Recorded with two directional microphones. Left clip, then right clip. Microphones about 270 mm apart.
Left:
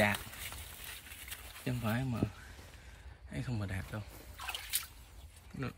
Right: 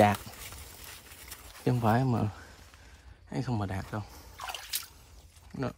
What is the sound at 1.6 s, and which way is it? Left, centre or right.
Speech, left.